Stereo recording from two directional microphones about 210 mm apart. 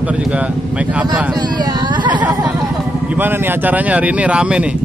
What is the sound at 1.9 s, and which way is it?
Chatter, 20° right (ahead or behind).